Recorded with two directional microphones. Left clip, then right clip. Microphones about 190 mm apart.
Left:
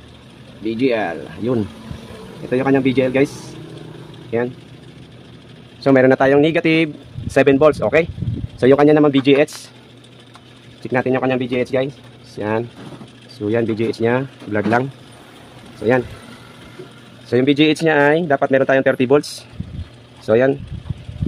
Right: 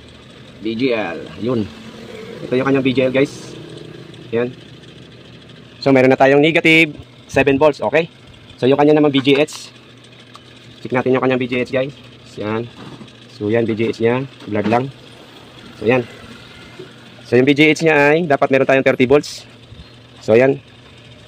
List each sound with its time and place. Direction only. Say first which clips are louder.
0.7 s speech: even; 10° left (ahead or behind)
5.9 s speech: right 1 dB; 5° right (ahead or behind)
7.3 s speech: left 1 dB; 15° left (ahead or behind)
10.9 s speech: right 2 dB; centre (ahead or behind)
13.4 s speech: right 2 dB; 5° right (ahead or behind)
17.3 s speech: right 3 dB; 10° right (ahead or behind)